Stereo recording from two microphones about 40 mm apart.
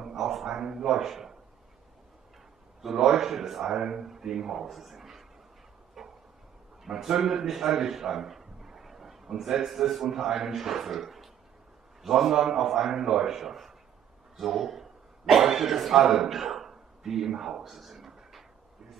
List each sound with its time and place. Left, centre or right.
0.1 s a sound: centre
0.5 s a man's voice: centre
2.8 s a man's voice: centre
3.7 s a man's voice: centre
6.0 s a sound: centre
6.8 s a man's voice: centre